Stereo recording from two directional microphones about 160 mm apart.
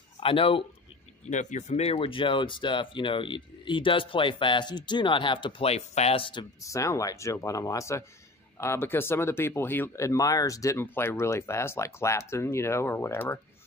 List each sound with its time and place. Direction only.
0.2 s speech: 35° left (ahead or behind)
1.3 s speech: 50° left (ahead or behind)
6.6 s speech: 20° left (ahead or behind)